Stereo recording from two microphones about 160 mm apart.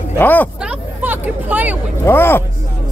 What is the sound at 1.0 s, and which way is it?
Speech, 10° right (ahead or behind).